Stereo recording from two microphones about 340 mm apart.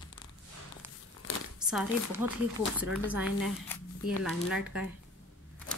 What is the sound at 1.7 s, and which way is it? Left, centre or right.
Speech, centre.